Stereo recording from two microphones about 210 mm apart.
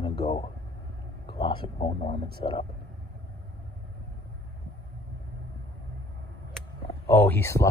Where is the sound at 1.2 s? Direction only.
25° left (ahead or behind).